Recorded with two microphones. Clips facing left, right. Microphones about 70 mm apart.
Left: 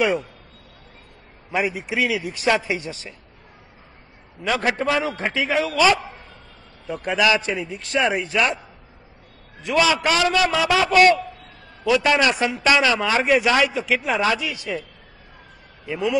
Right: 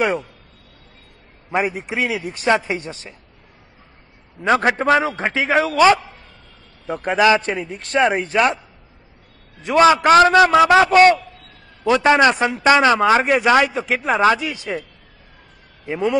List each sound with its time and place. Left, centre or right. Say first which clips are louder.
1.5 s a man's voice: right 2 dB; right
4.5 s a man's voice: right 6 dB; right
9.7 s a man's voice: right 7 dB; right